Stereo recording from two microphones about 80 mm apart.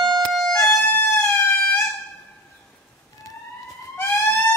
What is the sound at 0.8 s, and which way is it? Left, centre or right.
Chicken, left.